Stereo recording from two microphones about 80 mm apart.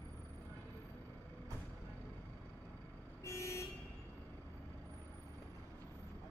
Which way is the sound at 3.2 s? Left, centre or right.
Left.